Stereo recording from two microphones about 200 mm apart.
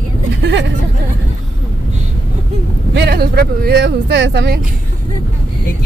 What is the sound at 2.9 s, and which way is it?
Speech, 55° right (ahead or behind).